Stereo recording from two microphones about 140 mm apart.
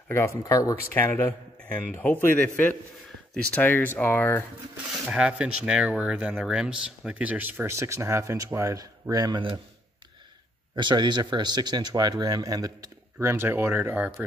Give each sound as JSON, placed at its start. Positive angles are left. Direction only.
{"t": 0.5, "sound": "a man's voice", "side_deg": 25}
{"t": 5.0, "sound": "speech", "side_deg": -10}
{"t": 10.8, "sound": "speech", "side_deg": -35}